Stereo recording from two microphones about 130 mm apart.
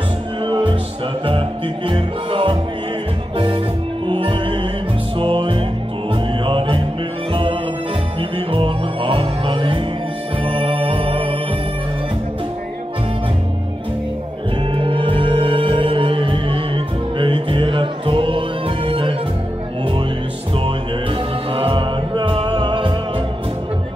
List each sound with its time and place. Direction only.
0.5 s music: 40° right (ahead or behind)
1.9 s music: 45° right (ahead or behind)
8.2 s music: 45° right (ahead or behind)
14.7 s music: 40° right (ahead or behind)
20.5 s music: 45° right (ahead or behind)